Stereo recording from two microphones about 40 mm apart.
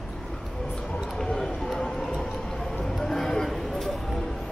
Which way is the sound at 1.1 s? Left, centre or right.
Centre.